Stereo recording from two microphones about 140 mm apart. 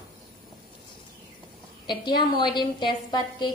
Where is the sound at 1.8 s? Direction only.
35° left (ahead or behind).